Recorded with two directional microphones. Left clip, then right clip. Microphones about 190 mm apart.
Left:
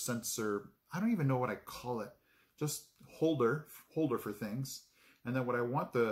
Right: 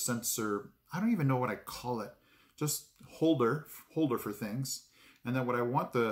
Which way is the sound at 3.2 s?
5° right (ahead or behind).